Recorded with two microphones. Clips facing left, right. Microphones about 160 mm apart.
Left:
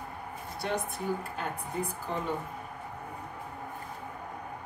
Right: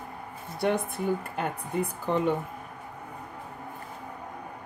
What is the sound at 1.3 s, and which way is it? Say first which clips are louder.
Speech: right 5 dB; 65° right (ahead or behind).